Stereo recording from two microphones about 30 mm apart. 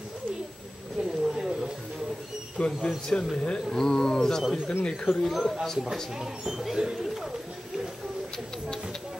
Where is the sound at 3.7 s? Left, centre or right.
Left.